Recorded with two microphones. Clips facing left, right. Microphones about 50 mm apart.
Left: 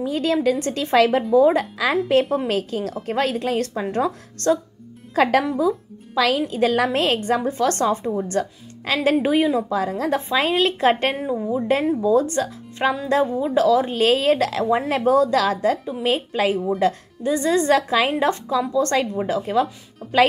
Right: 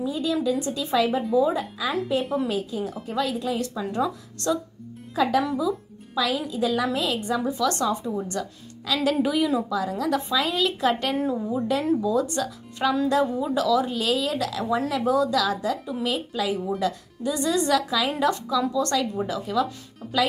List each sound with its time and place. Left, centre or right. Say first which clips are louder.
0.0 s a woman's voice: left 5 dB; left
5.1 s a woman's voice: left 4 dB; left
11.3 s a woman's voice: left 4 dB; left
12.0 s a woman's voice: left 5 dB; left
16.8 s a woman's voice: left 5 dB; left
20.0 s speech: left 5 dB; centre